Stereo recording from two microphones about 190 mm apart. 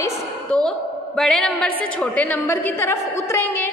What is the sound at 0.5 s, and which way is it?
A woman's voice, 5° left (ahead or behind).